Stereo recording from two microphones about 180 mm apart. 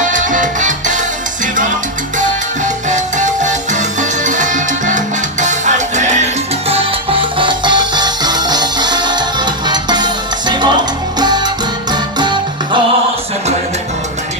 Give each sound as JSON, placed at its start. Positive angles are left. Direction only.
{"t": 0.0, "sound": "salsa music", "side_deg": -45}
{"t": 2.1, "sound": "salsa music", "side_deg": -45}
{"t": 6.7, "sound": "music", "side_deg": -30}